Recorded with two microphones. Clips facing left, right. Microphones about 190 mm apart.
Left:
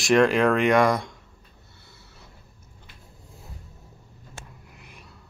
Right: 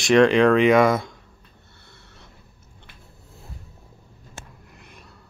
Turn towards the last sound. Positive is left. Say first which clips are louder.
# right 1 dB
turn(degrees=5)  # may be behind; listen again after turning